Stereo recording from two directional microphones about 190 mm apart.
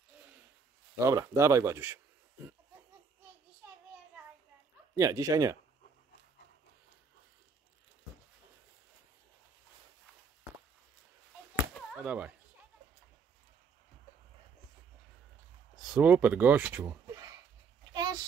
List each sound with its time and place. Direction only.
0.9 s speech: 15° right (ahead or behind)
4.9 s speech: 15° right (ahead or behind)
11.9 s whip: 5° right (ahead or behind)
15.8 s speech: 5° right (ahead or behind)
17.9 s a sound: 20° right (ahead or behind)